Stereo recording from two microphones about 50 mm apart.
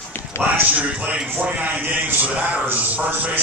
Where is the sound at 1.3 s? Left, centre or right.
Right.